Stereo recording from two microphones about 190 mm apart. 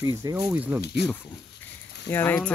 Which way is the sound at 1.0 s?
60° left (ahead or behind).